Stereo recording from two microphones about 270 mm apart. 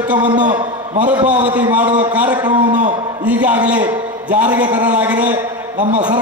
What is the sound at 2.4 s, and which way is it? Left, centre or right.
Speech, centre.